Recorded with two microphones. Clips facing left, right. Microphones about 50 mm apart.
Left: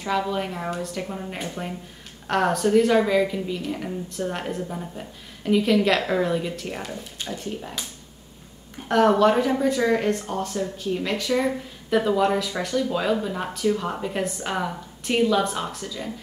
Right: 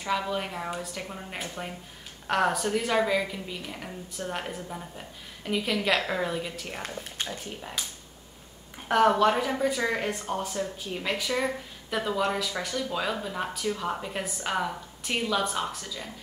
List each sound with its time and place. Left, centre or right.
0.0 s speech: centre